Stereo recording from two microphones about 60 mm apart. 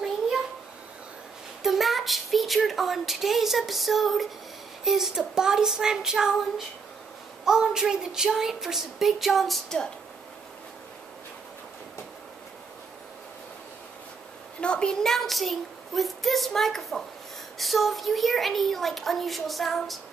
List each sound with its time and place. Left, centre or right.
1.6 s a woman's voice: centre
7.4 s a woman's voice: centre
14.6 s a child's voice: centre
15.0 s speech: centre